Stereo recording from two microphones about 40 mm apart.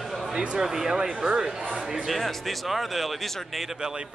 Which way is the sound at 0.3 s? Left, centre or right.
Right.